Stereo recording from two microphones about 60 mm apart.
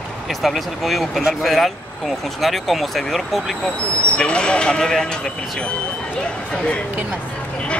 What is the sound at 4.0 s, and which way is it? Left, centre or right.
Speech, centre.